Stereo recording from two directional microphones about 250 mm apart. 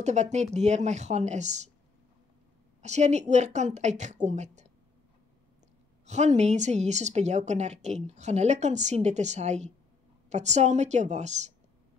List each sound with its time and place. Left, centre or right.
0.0 s speech: right
2.8 s speech: right
6.0 s speech: right